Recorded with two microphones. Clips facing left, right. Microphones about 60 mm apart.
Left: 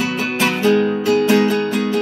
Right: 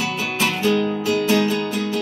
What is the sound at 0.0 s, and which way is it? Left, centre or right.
Music, left.